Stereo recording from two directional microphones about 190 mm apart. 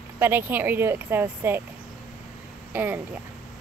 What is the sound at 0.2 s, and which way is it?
Speech, 10° right (ahead or behind).